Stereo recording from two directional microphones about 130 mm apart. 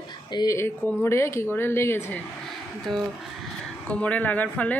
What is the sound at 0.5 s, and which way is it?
Speech, 20° left (ahead or behind).